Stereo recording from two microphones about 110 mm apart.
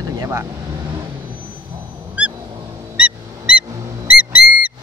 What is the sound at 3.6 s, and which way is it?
Music, 30° right (ahead or behind).